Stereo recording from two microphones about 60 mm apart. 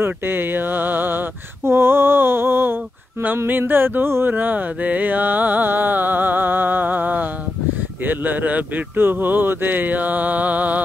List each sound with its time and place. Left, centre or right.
0.0 s speech: right
3.4 s music: right
8.0 s speech: right